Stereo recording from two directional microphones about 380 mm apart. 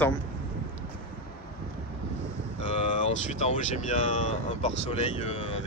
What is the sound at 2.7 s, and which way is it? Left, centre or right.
Speech, centre.